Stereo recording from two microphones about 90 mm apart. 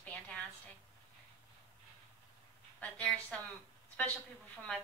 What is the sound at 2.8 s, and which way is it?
Speech, 15° left (ahead or behind).